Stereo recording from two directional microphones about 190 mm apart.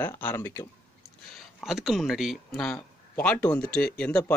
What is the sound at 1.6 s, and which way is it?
Speech, centre (ahead or behind).